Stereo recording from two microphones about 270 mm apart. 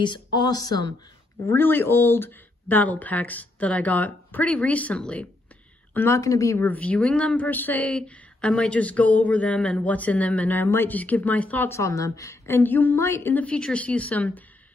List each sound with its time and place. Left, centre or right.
0.0 s a woman's voice: centre